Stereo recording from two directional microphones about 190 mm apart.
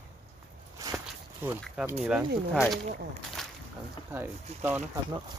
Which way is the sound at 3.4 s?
Centre (ahead or behind).